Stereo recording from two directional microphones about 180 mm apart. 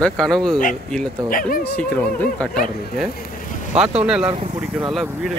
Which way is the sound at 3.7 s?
5° right (ahead or behind).